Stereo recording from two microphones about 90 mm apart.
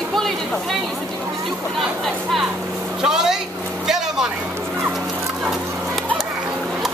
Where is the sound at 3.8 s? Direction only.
5° right (ahead or behind).